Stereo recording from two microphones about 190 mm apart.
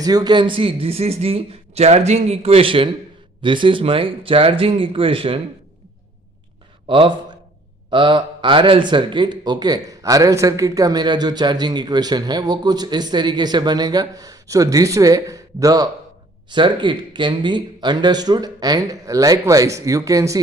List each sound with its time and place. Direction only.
0.0 s a man's voice: 20° right (ahead or behind)
6.9 s speech: 25° right (ahead or behind)